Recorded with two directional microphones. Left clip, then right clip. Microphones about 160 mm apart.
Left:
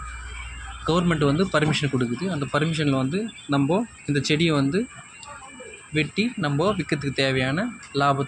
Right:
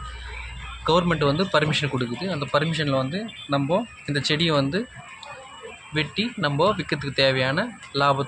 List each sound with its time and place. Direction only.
0.8 s speech: centre (ahead or behind)
5.9 s speech: centre (ahead or behind)